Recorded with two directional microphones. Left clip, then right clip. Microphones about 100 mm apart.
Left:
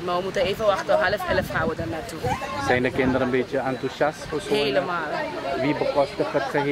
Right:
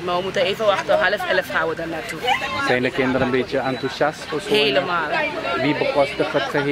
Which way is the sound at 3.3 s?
Centre (ahead or behind).